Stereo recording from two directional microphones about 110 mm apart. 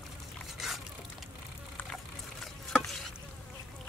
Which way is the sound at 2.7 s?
5° left (ahead or behind).